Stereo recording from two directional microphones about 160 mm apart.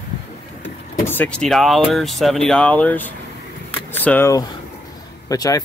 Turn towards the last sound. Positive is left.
turn(degrees=20)  # may be behind; listen again after turning